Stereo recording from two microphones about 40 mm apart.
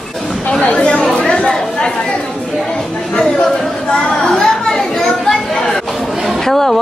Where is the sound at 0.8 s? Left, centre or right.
Centre.